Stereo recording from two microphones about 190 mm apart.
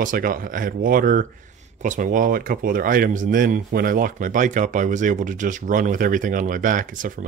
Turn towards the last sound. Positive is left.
turn(degrees=-45)  # may be behind; listen again after turning